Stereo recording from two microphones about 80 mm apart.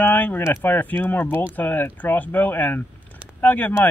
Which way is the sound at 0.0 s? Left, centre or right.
Left.